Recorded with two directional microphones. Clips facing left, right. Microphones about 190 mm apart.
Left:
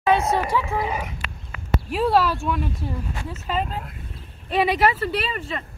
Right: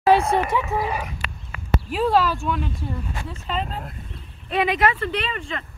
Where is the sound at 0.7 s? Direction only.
15° left (ahead or behind).